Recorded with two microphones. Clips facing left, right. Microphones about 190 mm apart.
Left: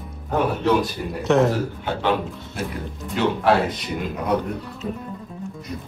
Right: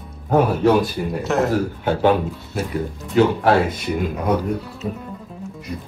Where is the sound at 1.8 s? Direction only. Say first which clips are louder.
Right 7 dB; 45° right (ahead or behind).